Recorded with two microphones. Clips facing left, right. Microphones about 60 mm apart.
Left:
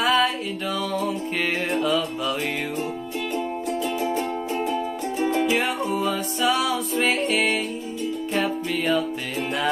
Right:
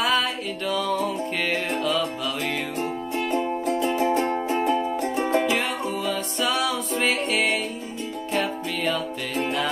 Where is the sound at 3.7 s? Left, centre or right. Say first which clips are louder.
Right 4 dB; right.